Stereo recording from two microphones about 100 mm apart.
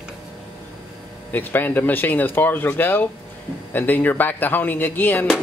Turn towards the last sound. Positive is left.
turn(degrees=20)  # may be behind; listen again after turning